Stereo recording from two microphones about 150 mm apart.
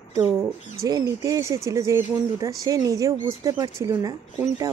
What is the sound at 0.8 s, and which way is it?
Speech, 25° right (ahead or behind).